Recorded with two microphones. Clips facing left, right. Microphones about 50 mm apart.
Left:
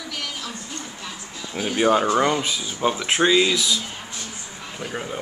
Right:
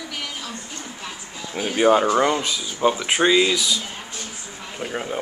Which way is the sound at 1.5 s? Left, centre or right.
Centre.